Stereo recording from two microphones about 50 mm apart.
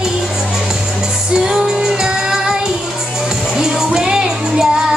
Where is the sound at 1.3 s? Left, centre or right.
Centre.